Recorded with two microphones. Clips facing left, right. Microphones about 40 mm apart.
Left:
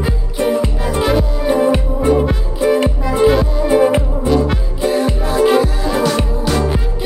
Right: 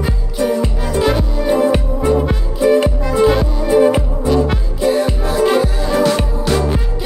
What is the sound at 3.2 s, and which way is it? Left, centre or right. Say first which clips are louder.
Music: left 3 dB; centre.